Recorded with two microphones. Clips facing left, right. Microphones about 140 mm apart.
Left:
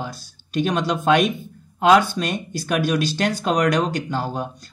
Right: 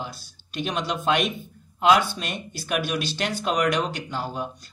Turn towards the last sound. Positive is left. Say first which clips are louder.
# left 5 dB
turn(degrees=40)  # may be behind; listen again after turning